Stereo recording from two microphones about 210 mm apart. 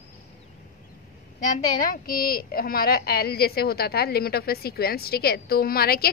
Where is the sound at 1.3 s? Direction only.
40° left (ahead or behind).